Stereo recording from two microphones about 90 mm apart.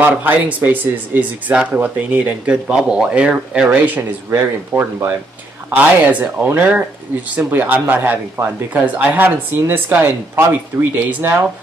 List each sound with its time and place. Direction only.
0.0 s speech: 15° right (ahead or behind)
6.1 s speech: 20° right (ahead or behind)